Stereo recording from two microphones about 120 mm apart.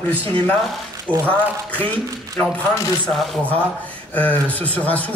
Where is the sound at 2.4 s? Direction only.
20° left (ahead or behind).